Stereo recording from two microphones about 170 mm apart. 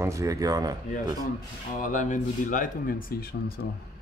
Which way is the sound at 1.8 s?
50° left (ahead or behind).